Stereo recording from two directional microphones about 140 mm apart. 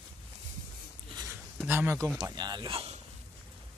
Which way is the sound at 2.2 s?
30° right (ahead or behind).